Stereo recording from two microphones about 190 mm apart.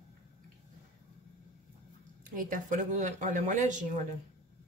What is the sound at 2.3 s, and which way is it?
Speech, 45° right (ahead or behind).